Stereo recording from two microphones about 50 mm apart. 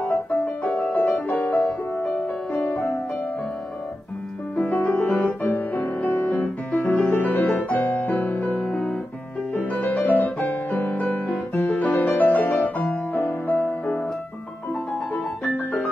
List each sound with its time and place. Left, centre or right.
0.7 s music: left
1.0 s music: left
4.7 s music: left
5.6 s music: left
9.5 s music: left
15.1 s music: left